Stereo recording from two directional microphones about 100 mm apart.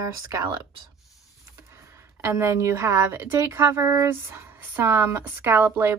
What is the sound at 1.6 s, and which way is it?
A woman's voice, 25° right (ahead or behind).